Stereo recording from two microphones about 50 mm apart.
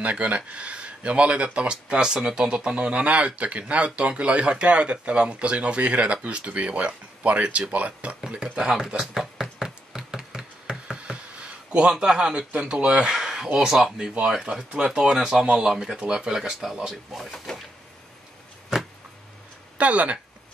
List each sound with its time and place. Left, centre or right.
0.0 s speech: right
8.2 s speech: centre
9.0 s a sound: centre; by 11.9 s right
12.0 s speech: centre
16.9 s speech: centre
19.8 s speech: right